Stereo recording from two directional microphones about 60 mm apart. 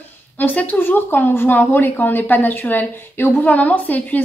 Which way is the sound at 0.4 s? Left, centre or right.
Left.